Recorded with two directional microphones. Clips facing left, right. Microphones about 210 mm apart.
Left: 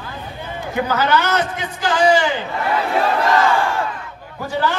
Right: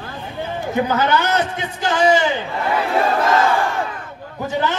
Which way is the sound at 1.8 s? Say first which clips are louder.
Even; 20° right (ahead or behind).